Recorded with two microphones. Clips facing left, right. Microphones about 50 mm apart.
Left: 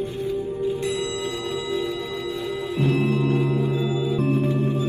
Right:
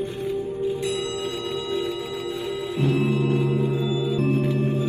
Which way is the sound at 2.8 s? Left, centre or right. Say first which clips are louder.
Even; left.